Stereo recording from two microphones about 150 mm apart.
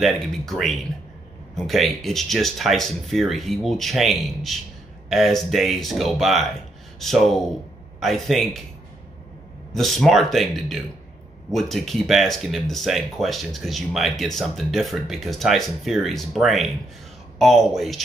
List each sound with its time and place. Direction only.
0.0 s speech: centre (ahead or behind)
9.8 s speech: centre (ahead or behind)